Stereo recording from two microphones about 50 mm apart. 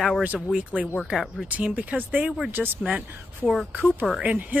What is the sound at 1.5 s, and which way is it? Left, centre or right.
Speech, right.